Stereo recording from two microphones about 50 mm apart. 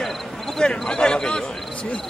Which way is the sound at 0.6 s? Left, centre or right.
Centre.